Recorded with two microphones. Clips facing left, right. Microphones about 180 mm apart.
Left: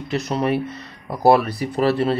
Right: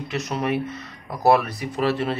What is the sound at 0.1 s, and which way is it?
Speech, 35° left (ahead or behind).